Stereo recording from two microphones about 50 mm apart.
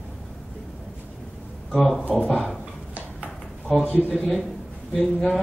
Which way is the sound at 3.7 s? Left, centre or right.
Centre.